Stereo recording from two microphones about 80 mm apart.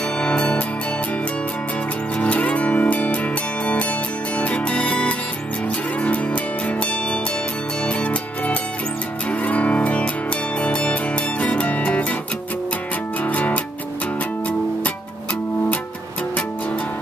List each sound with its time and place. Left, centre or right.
0.2 s music: centre
2.1 s music: centre
4.4 s music: centre
13.2 s music: centre